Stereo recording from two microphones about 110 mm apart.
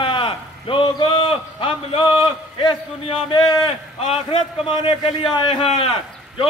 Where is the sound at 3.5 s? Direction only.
60° left (ahead or behind).